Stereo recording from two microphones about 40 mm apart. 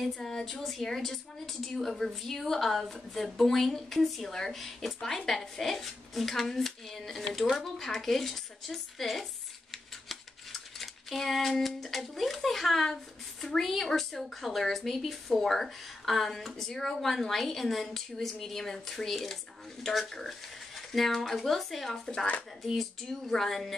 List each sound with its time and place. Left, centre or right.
0.0 s a woman's voice: centre